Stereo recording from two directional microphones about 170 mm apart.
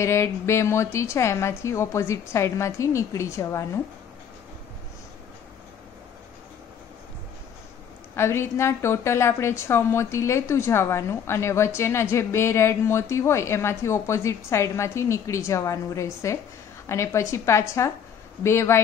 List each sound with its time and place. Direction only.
0.0 s a woman's voice: 15° left (ahead or behind)
8.2 s a woman's voice: 15° left (ahead or behind)